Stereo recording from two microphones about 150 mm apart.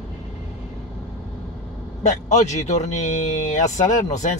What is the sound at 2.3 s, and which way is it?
Speech, 50° left (ahead or behind).